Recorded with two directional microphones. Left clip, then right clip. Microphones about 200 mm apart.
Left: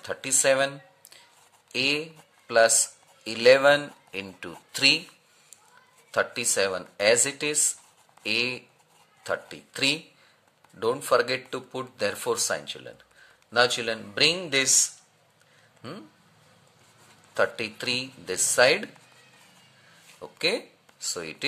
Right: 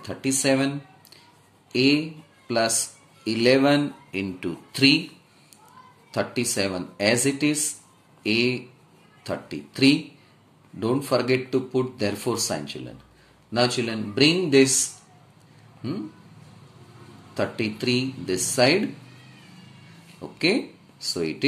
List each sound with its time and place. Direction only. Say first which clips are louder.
0.0 s speech: even; 40° left (ahead or behind)
1.7 s speech: right 4 dB; 35° left (ahead or behind)
6.1 s speech: left 1 dB; 40° left (ahead or behind)
17.3 s speech: left 1 dB; 40° left (ahead or behind)
20.2 s speech: right 3 dB; 30° left (ahead or behind)